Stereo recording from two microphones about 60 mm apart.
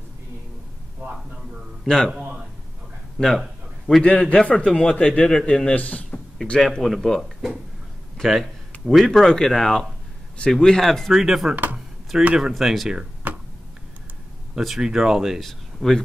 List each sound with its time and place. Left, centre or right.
1.9 s speech: centre
3.3 s a sound: centre
4.0 s speech: centre
5.8 s speech: left
6.8 s speech: centre
9.0 s speech: centre
11.5 s speech: right
12.2 s speech: centre
13.2 s tick: right
14.8 s speech: centre